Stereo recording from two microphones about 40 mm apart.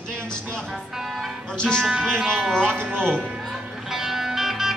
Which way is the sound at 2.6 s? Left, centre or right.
Right.